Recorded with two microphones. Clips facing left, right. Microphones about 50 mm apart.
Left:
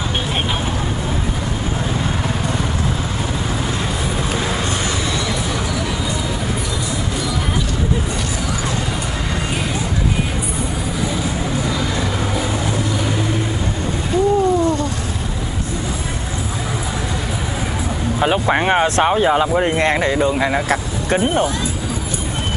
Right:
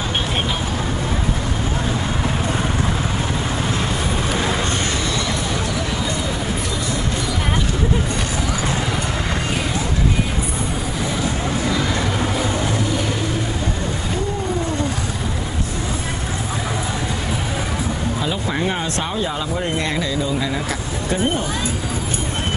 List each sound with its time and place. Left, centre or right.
18.2 s speech: left